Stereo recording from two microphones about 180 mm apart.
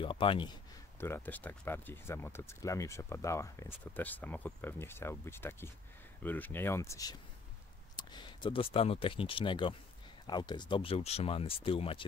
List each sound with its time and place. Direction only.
0.0 s speech: 30° left (ahead or behind)
1.0 s speech: 10° left (ahead or behind); by 12.1 s 30° left (ahead or behind)